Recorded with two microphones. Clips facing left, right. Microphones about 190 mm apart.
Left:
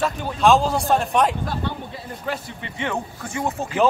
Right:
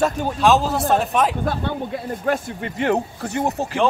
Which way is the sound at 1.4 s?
55° right (ahead or behind).